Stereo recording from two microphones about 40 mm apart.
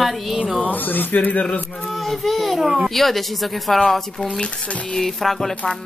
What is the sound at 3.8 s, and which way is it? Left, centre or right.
Music, centre.